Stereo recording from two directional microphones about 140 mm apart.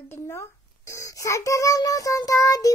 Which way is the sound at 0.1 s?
20° left (ahead or behind).